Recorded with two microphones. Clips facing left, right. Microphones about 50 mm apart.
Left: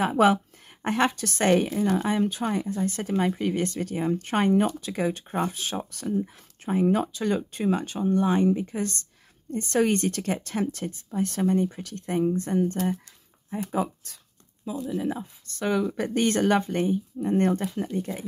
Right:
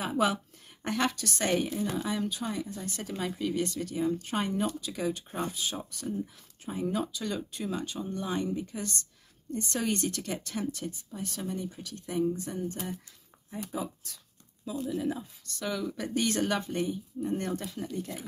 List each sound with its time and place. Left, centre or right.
0.0 s a woman's voice: left
1.4 s speech: left
6.1 s speech: left
13.5 s speech: left
14.6 s speech: left